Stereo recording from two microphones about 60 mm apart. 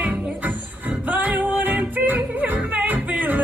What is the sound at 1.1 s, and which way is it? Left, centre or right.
Music, right.